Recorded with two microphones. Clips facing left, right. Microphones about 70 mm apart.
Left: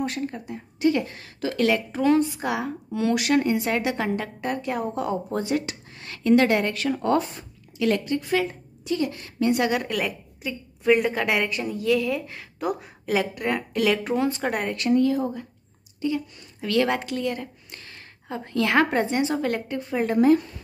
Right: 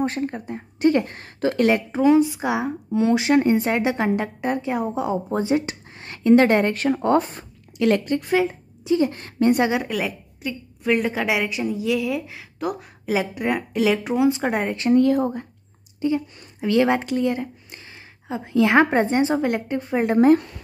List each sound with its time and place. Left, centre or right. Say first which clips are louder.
0.0 s a woman's voice: right 4 dB; right
2.0 s a woman's voice: right 5 dB; centre; by 7.2 s right
7.2 s a woman's voice: right 4 dB; right
8.8 s a woman's voice: right 6 dB; right
9.1 s a woman's voice: right 4 dB; right
9.6 s a woman's voice: right 3 dB; right
9.8 s a woman's voice: right 1 dB; centre
14.9 s speech: right 4 dB; right
16.0 s a woman's voice: right 4 dB; right